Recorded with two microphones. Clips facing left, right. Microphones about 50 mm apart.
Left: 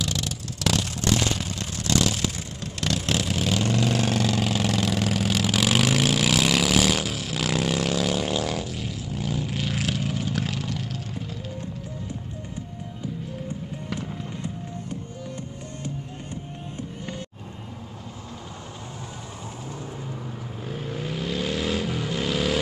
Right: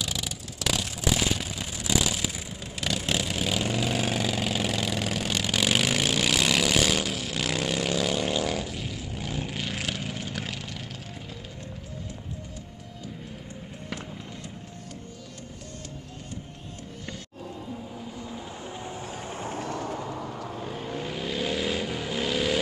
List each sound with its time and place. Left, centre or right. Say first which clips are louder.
0.0 s vehicle: left 4 dB; centre
19.7 s vehicle: right 4 dB; right
20.6 s vehicle: left 3 dB; centre